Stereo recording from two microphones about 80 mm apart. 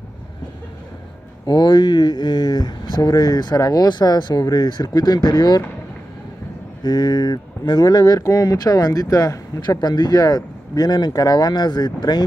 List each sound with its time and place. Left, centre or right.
1.4 s speech: left
6.8 s speech: left